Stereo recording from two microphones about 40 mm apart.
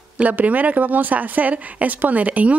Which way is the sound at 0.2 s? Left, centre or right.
Right.